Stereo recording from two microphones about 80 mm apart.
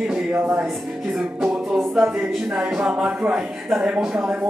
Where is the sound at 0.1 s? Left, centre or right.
Centre.